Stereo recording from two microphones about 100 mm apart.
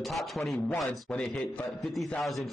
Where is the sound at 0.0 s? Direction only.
Centre (ahead or behind).